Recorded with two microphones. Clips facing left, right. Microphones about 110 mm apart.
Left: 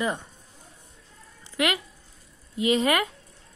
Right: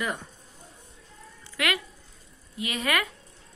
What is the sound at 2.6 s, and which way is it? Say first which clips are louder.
Speech: left 6 dB; 25° left (ahead or behind).